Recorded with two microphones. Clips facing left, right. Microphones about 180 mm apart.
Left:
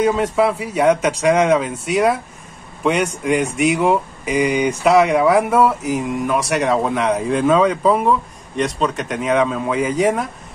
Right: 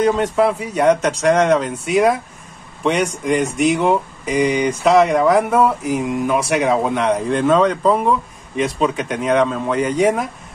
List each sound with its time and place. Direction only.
0.0 s a man's voice: centre (ahead or behind)